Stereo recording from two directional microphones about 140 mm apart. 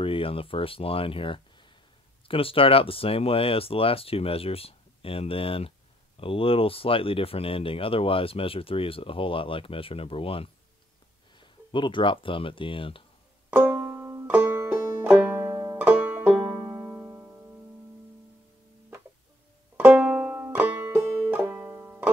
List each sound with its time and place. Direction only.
0.0 s speech: 40° left (ahead or behind)
13.5 s banjo: 15° right (ahead or behind)
19.8 s banjo: 10° right (ahead or behind)